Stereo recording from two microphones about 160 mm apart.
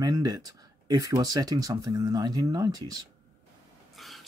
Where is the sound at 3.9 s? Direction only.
Centre (ahead or behind).